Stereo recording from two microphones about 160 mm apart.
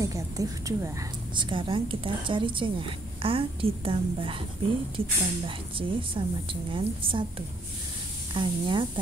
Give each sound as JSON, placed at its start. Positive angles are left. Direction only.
{"t": 0.0, "sound": "a woman's voice", "side_deg": -20}